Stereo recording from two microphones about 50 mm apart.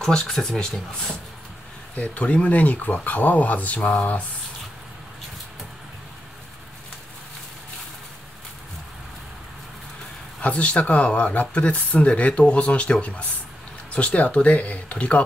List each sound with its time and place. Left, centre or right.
0.0 s speech: centre
2.0 s speech: left
10.4 s speech: left